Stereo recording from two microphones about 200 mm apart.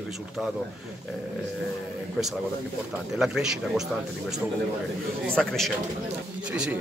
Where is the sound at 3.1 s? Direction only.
Centre (ahead or behind).